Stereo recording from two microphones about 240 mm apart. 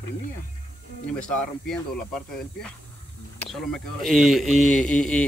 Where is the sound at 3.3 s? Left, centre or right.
Centre.